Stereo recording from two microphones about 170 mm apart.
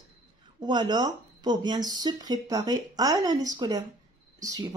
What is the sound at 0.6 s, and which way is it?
Speech, 25° right (ahead or behind).